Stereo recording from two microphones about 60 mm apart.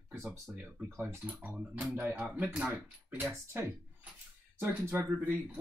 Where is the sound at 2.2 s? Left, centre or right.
Centre.